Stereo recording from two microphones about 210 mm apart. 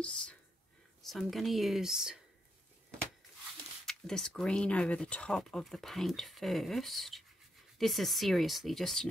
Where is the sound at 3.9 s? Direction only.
Centre (ahead or behind).